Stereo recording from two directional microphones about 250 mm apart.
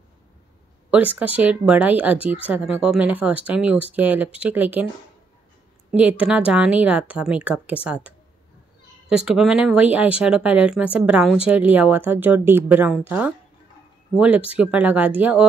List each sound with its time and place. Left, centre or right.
0.8 s speech: centre
5.9 s speech: centre
9.1 s speech: centre